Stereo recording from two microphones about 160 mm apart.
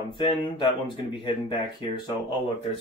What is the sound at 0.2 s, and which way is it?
Speech, 30° left (ahead or behind).